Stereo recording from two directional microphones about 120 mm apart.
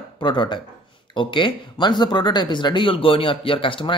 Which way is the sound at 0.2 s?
40° left (ahead or behind).